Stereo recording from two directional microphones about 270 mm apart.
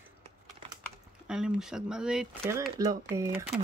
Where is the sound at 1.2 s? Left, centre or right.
Centre.